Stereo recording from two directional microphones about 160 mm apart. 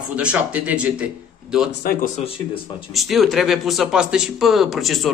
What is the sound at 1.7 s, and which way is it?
Speech, 75° left (ahead or behind).